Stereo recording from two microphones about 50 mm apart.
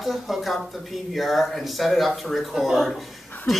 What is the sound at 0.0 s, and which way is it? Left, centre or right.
Speech, centre.